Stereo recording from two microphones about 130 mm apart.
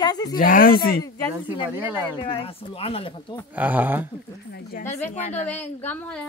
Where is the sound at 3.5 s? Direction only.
15° right (ahead or behind).